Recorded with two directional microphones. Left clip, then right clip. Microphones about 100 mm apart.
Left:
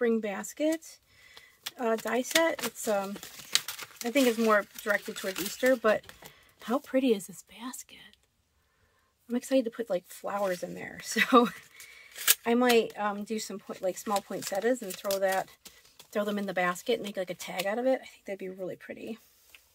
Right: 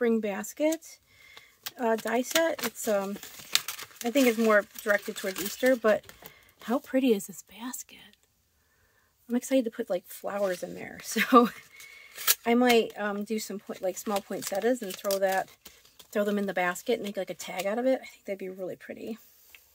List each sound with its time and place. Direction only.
0.0 s speech: 30° right (ahead or behind)
1.3 s a sound: 25° right (ahead or behind)
2.0 s speech: 25° right (ahead or behind)
3.3 s crumpling: 15° right (ahead or behind)
3.8 s speech: 25° right (ahead or behind)
9.3 s speech: 30° right (ahead or behind)
15.2 s a sound: 25° right (ahead or behind)
16.1 s speech: 30° right (ahead or behind)